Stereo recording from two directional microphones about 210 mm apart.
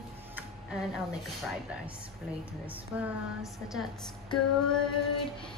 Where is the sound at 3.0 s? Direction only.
Centre (ahead or behind).